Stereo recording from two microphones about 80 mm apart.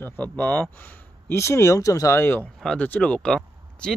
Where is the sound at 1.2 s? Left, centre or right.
Left.